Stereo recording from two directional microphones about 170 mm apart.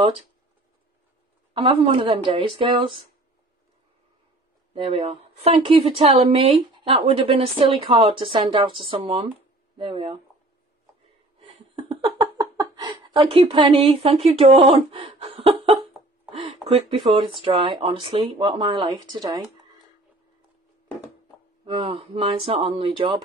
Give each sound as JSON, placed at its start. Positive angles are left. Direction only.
{"t": 1.5, "sound": "a woman's voice", "side_deg": -30}
{"t": 4.7, "sound": "a woman's voice", "side_deg": -35}
{"t": 11.3, "sound": "a sound", "side_deg": -35}
{"t": 17.1, "sound": "speech", "side_deg": -30}
{"t": 21.6, "sound": "a woman's voice", "side_deg": -30}